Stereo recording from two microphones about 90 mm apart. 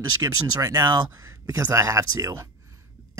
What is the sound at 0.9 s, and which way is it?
Speech, 55° right (ahead or behind).